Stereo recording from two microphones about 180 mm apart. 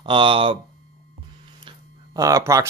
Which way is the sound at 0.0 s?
30° right (ahead or behind).